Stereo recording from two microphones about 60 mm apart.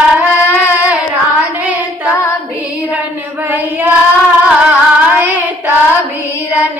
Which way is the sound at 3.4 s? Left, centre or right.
Right.